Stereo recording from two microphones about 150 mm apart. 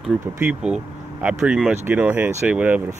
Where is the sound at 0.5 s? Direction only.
5° right (ahead or behind).